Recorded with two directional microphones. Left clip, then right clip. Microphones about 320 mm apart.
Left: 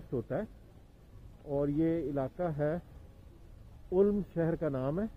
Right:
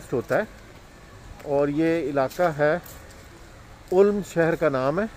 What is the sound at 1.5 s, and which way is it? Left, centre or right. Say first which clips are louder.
Speech: right 10 dB; centre.